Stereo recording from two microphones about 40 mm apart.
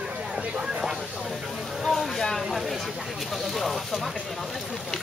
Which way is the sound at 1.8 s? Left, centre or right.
Centre.